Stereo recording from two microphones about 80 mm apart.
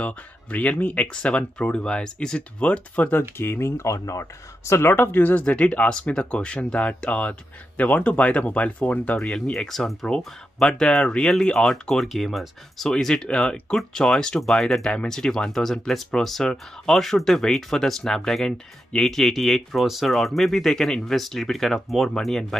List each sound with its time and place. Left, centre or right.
0.0 s speech: centre